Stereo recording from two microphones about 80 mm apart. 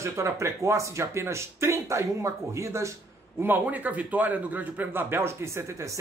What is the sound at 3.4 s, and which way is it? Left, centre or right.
Speech, right.